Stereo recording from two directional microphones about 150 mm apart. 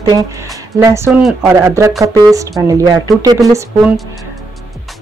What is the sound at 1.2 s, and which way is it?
Speech, centre (ahead or behind).